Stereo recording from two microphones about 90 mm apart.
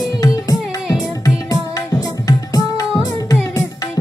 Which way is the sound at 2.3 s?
40° left (ahead or behind).